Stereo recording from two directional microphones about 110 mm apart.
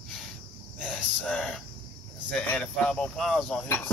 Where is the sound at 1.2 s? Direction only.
10° left (ahead or behind).